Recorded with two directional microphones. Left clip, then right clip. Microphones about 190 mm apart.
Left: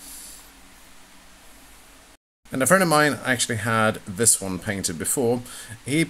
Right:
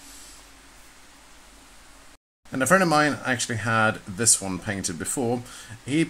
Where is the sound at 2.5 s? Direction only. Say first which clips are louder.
Left 1 dB; 15° left (ahead or behind).